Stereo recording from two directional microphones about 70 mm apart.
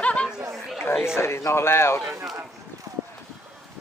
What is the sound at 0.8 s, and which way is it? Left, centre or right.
Speech, left.